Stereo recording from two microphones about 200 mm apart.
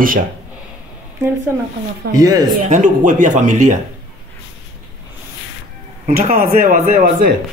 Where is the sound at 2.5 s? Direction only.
40° right (ahead or behind).